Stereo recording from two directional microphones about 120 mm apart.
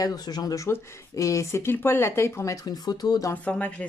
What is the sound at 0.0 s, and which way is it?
Speech, 30° left (ahead or behind).